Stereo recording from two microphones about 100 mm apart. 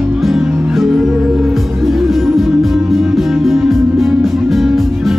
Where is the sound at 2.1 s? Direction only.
5° right (ahead or behind).